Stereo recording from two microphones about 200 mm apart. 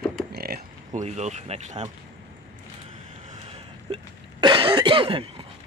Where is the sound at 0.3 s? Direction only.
50° right (ahead or behind).